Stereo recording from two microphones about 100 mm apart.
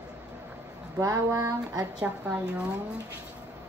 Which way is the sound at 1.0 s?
30° right (ahead or behind).